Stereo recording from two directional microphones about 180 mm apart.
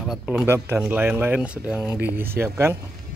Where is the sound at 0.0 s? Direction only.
5° right (ahead or behind).